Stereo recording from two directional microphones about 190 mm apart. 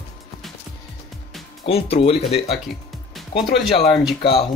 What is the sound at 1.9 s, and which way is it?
Speech, 30° left (ahead or behind).